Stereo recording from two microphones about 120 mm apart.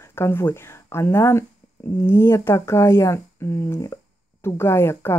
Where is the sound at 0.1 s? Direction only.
20° left (ahead or behind).